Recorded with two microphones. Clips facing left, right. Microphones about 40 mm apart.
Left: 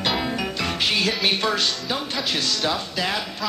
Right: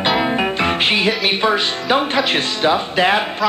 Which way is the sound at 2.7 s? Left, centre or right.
Right.